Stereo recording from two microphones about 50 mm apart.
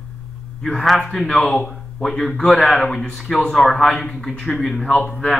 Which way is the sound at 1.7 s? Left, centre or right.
Centre.